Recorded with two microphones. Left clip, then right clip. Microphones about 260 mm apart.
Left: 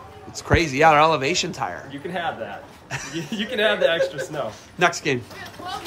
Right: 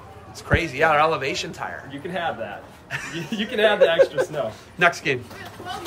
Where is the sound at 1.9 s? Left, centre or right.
Centre.